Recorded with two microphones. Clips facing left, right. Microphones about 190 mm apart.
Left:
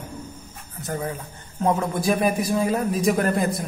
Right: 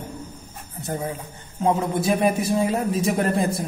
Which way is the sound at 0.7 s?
25° right (ahead or behind).